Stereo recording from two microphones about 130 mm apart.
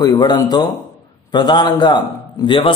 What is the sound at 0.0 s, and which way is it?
A man's voice, 30° left (ahead or behind).